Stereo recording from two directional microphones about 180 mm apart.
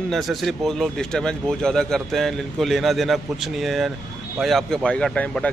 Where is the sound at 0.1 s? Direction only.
Centre (ahead or behind).